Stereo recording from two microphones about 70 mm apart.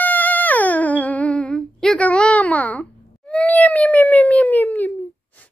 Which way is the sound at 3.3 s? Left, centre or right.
Centre.